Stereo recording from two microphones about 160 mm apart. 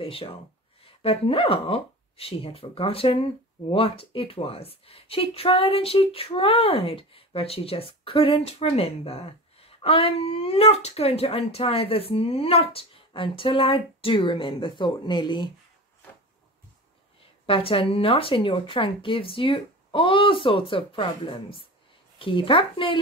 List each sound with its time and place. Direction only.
0.0 s speech: 35° left (ahead or behind)
17.5 s speech: 35° left (ahead or behind)